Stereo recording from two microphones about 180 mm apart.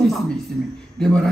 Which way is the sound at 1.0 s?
5° left (ahead or behind).